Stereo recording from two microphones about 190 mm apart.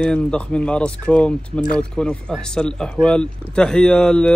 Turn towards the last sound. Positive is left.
turn(degrees=5)  # may be behind; listen again after turning